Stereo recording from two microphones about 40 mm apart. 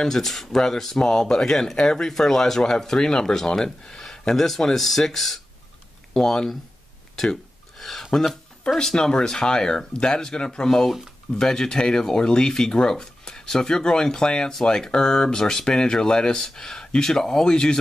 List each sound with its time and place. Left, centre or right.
0.0 s speech: centre
7.2 s a sound: centre
8.9 s speech: centre